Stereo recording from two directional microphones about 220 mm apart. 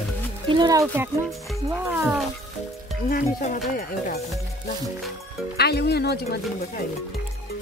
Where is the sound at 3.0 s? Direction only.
40° left (ahead or behind).